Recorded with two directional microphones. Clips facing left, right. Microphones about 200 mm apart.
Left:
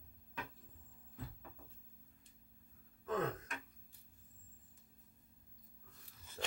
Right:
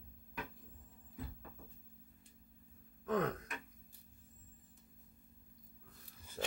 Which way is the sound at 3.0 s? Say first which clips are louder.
Right 3 dB; 15° right (ahead or behind).